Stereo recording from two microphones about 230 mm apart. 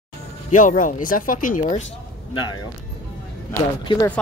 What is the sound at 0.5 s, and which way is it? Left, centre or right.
Speech, left.